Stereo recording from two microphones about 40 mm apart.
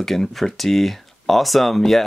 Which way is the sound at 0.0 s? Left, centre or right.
Centre.